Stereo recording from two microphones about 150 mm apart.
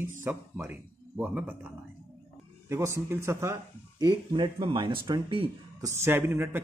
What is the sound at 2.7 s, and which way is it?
Speech, 20° right (ahead or behind).